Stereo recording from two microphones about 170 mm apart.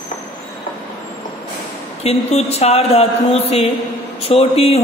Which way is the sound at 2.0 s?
40° left (ahead or behind).